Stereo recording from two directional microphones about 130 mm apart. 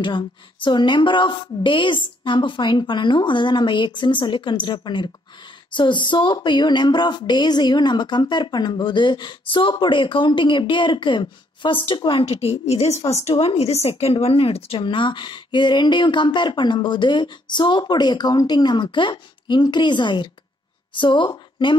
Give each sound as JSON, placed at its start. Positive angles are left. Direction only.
{"t": 0.0, "sound": "speech", "side_deg": 40}
{"t": 13.3, "sound": "speech", "side_deg": 45}